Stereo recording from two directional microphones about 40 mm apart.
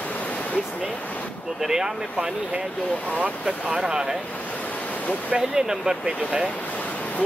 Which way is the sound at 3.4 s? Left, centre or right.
Right.